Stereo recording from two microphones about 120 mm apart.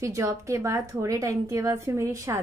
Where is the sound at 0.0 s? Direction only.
25° right (ahead or behind).